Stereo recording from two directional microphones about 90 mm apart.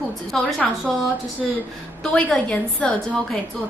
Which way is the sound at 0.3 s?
5° left (ahead or behind).